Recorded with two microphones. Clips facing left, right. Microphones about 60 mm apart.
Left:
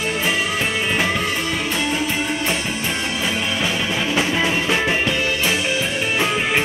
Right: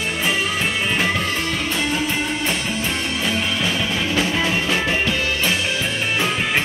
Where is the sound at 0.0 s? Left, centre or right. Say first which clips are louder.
Left 1 dB; centre.